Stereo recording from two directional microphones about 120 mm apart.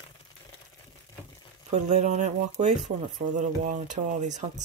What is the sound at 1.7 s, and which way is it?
Speech, 80° right.